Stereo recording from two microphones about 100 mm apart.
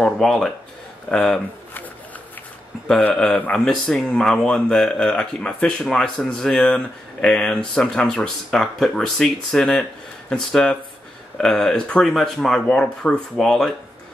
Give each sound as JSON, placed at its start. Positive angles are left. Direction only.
{"t": 0.0, "sound": "speech", "side_deg": 0}
{"t": 3.0, "sound": "speech", "side_deg": 15}